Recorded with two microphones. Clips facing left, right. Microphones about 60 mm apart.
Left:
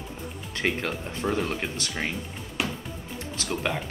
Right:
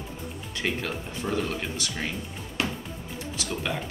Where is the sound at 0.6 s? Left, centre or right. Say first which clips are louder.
Left 2 dB; left.